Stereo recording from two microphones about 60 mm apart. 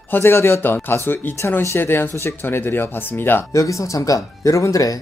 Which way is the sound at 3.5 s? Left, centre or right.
Left.